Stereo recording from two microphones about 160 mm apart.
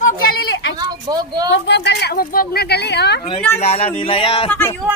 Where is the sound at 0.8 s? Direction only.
25° right (ahead or behind).